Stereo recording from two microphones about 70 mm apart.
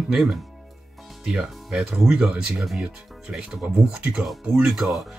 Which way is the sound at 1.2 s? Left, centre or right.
Centre.